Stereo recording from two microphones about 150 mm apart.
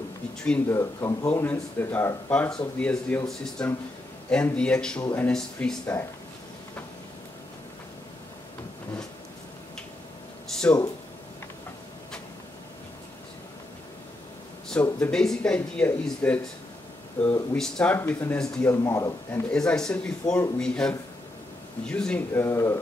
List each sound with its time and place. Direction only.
0.7 s speech: 20° left (ahead or behind)
10.5 s a sound: 5° left (ahead or behind)
14.7 s speech: 5° left (ahead or behind)
18.8 s speech: 20° left (ahead or behind)
19.5 s speech: 5° left (ahead or behind)